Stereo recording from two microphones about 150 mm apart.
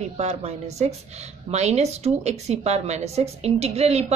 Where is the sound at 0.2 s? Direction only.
50° right (ahead or behind).